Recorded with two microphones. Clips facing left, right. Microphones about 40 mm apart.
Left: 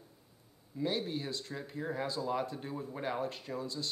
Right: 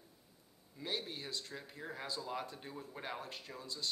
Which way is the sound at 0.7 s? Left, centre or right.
Centre.